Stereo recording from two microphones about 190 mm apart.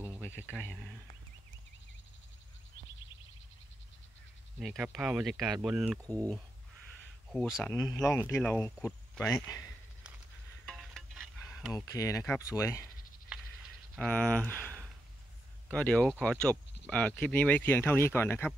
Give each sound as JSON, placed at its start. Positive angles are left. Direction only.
{"t": 0.2, "sound": "speech", "side_deg": 10}
{"t": 4.6, "sound": "speech", "side_deg": 0}
{"t": 7.2, "sound": "speech", "side_deg": 0}
{"t": 7.9, "sound": "speech", "side_deg": 15}
{"t": 10.6, "sound": "music", "side_deg": 0}
{"t": 11.7, "sound": "speech", "side_deg": 15}
{"t": 13.9, "sound": "speech", "side_deg": 5}